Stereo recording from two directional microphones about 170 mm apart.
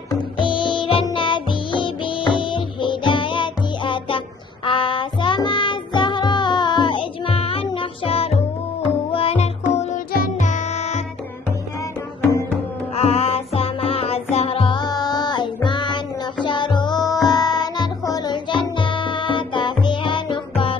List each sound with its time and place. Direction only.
0.1 s music: 30° left (ahead or behind)
10.1 s music for children: 50° left (ahead or behind)
12.2 s music: 15° left (ahead or behind)
12.9 s music: 35° left (ahead or behind)